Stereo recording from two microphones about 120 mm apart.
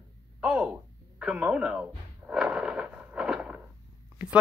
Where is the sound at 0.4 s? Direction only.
10° right (ahead or behind).